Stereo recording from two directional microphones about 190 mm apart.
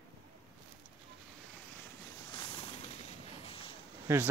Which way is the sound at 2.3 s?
25° left (ahead or behind).